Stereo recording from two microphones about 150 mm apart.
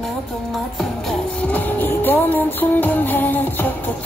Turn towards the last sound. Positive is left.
turn(degrees=10)  # may be behind; listen again after turning